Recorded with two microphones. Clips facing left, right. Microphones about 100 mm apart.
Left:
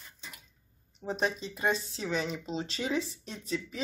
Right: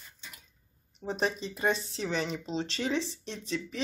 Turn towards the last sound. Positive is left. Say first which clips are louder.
# right 1 dB
turn(degrees=5)  # may be behind; listen again after turning